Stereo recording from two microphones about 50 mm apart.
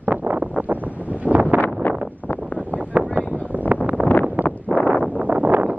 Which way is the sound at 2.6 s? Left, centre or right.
Right.